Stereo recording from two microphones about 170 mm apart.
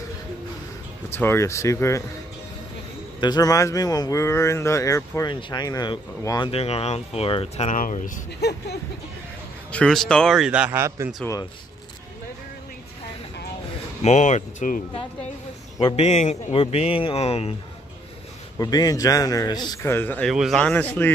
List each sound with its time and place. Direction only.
1.1 s speech: 15° left (ahead or behind)
3.2 s speech: 25° left (ahead or behind)
6.5 s speech: 35° left (ahead or behind)
7.7 s speech: 50° left (ahead or behind)
8.3 s speech: 75° left (ahead or behind)
9.7 s a man's voice: 5° left (ahead or behind); by 11.1 s 15° right (ahead or behind)
14.0 s speech: 45° left (ahead or behind)
15.8 s speech: 40° left (ahead or behind)
18.6 s speech: 20° left (ahead or behind)
20.2 s a man's voice: centre (ahead or behind)